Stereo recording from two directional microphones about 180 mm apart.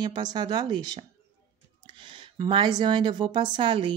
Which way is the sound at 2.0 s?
25° right (ahead or behind).